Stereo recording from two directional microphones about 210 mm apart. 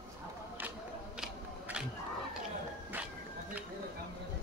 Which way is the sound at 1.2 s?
5° right (ahead or behind).